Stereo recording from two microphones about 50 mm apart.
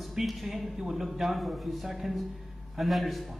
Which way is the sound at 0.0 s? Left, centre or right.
Centre.